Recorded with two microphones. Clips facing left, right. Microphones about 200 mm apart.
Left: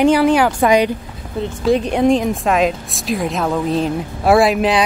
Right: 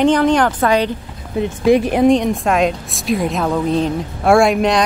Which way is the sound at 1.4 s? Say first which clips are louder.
Right 3 dB; 15° right (ahead or behind).